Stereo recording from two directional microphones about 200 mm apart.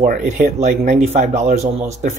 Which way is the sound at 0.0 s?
40° right (ahead or behind).